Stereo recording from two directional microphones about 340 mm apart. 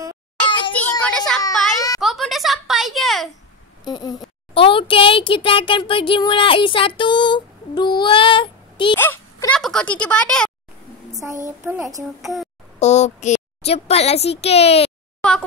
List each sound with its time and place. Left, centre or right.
0.7 s a sound: centre
3.8 s a child's voice: centre
7.0 s female singing: centre
11.1 s a child's voice: centre
12.7 s a woman's voice: centre